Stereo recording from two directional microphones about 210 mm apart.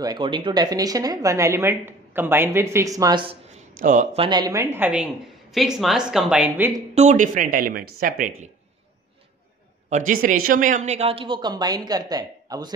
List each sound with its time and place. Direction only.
0.0 s speech: 20° right (ahead or behind)
3.8 s speech: 35° right (ahead or behind); by 6.8 s 10° right (ahead or behind)
7.0 s speech: 35° right (ahead or behind)
9.8 s a woman's voice: 35° right (ahead or behind); by 12.7 s 20° right (ahead or behind)